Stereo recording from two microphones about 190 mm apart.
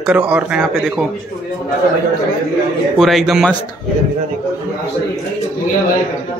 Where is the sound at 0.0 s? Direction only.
5° right (ahead or behind).